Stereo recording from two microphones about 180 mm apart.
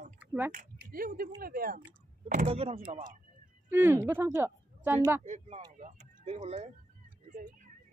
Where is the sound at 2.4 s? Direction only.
35° right (ahead or behind).